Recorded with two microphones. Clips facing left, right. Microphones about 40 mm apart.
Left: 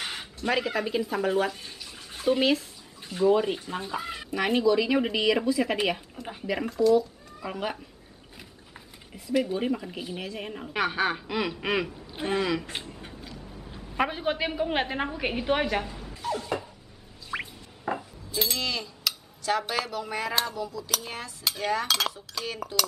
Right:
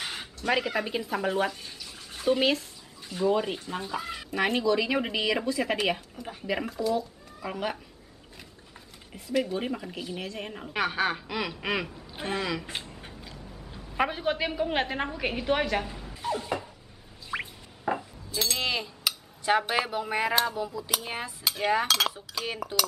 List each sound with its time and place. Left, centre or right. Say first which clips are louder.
0.5 s speech: even; centre
1.5 s bathtub: left 1 dB; centre
3.1 s speech: left 3 dB; centre
9.1 s speech: left 2 dB; centre
12.6 s a sound: left 1 dB; centre
13.4 s a sound: left 1 dB; left
13.9 s speech: even; centre
16.2 s a sound: even; centre
17.3 s music: even; centre
18.6 s dishes: right 1 dB; right
19.7 s a sound: right 2 dB; right
21.8 s speech: right 1 dB; centre